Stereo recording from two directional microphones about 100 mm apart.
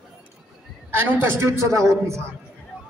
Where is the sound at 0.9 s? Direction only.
25° right (ahead or behind).